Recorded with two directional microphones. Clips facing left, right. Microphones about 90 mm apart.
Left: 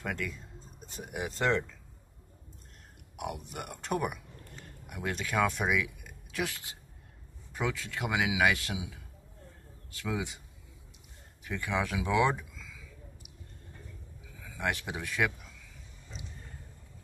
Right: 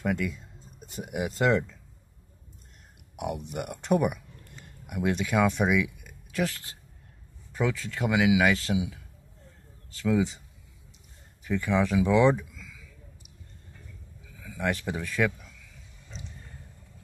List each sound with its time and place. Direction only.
0.0 s speech: 5° right (ahead or behind)
3.2 s speech: centre (ahead or behind)
6.5 s speech: 15° left (ahead or behind)
10.0 s speech: 10° left (ahead or behind)
11.4 s speech: 5° left (ahead or behind)
14.4 s a sound: 5° left (ahead or behind)
14.9 s speech: 15° left (ahead or behind)